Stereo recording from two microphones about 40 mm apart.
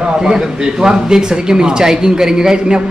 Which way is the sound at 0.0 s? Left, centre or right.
Centre.